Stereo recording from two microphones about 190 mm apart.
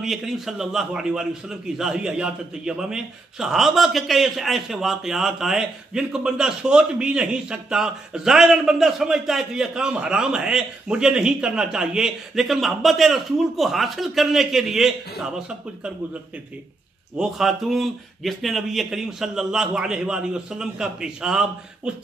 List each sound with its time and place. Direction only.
0.0 s a man's voice: centre (ahead or behind)
17.2 s a man's voice: centre (ahead or behind)